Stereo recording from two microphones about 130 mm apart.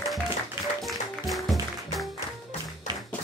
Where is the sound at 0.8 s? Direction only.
Centre (ahead or behind).